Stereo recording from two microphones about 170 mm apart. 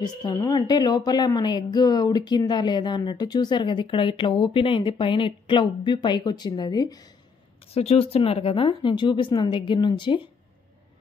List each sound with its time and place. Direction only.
0.0 s a woman's voice: 25° left (ahead or behind)
7.6 s a woman's voice: 35° left (ahead or behind)